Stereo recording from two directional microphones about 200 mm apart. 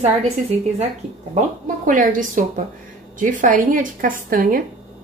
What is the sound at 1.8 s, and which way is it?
A woman's voice, 40° right (ahead or behind).